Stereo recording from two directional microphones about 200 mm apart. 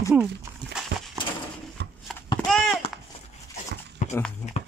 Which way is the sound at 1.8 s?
60° right (ahead or behind).